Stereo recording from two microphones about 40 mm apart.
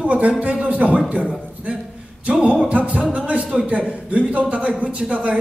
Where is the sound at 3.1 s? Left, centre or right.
Right.